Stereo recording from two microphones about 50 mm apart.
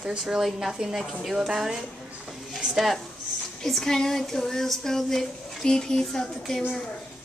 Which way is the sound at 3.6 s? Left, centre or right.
Centre.